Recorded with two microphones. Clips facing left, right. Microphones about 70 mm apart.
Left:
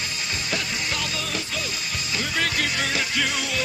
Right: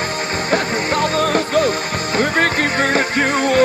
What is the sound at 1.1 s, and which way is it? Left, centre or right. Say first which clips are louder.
Music: right 14 dB; right.